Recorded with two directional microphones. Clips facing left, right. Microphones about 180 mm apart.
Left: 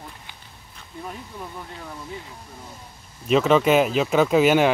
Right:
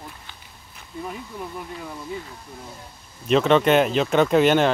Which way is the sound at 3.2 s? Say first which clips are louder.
Even; 5° left (ahead or behind).